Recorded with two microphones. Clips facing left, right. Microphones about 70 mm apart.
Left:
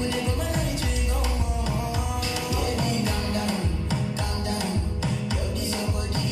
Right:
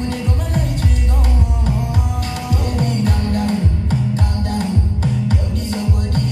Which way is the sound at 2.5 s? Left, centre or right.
Right.